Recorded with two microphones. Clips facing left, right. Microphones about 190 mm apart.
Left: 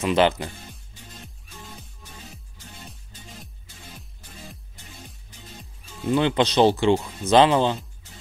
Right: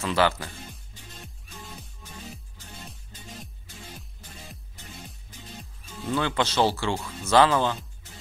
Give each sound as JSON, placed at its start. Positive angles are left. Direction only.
{"t": 0.0, "sound": "speech", "side_deg": 20}
{"t": 5.9, "sound": "speech", "side_deg": 20}